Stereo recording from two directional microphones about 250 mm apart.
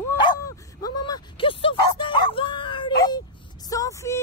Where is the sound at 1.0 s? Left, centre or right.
Centre.